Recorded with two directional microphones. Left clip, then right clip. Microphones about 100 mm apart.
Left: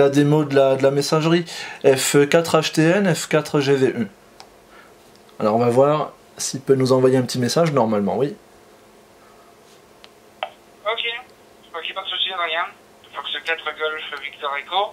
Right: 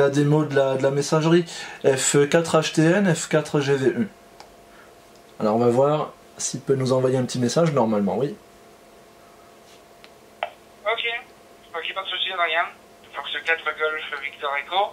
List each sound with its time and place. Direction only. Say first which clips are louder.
0.0 s speech: left 3 dB; 30° left (ahead or behind)
5.4 s speech: left 3 dB; 35° left (ahead or behind)
10.4 s a sound: left 1 dB; 10° left (ahead or behind)
11.7 s telephone: left 1 dB; 10° left (ahead or behind)